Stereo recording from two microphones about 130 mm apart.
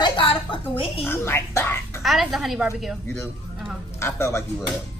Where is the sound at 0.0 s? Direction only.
40° left (ahead or behind).